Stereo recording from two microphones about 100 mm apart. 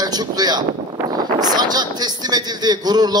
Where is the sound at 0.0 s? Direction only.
40° right (ahead or behind).